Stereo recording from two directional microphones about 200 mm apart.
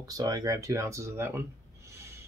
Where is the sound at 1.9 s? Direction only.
15° right (ahead or behind).